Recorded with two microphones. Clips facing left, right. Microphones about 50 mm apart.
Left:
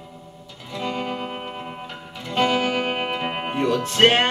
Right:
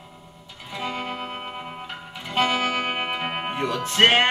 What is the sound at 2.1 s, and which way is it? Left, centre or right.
Music, centre.